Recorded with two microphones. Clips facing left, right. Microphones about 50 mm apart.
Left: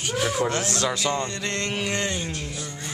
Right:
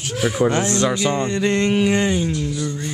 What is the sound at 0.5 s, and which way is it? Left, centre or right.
Music, right.